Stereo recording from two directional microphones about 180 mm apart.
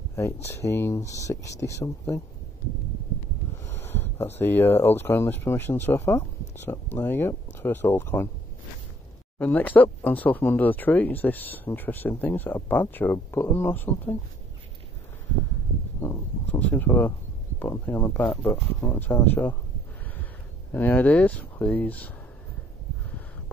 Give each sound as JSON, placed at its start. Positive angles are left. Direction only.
{"t": 0.1, "sound": "speech", "side_deg": 15}
{"t": 3.6, "sound": "speech", "side_deg": 15}
{"t": 9.4, "sound": "speech", "side_deg": 10}
{"t": 16.0, "sound": "speech", "side_deg": 10}
{"t": 20.7, "sound": "speech", "side_deg": 10}